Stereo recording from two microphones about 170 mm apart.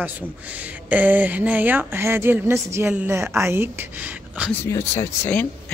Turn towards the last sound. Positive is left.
turn(degrees=10)  # may be behind; listen again after turning